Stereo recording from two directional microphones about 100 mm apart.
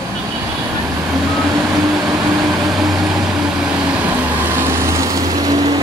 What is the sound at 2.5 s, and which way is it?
Vehicle, centre (ahead or behind).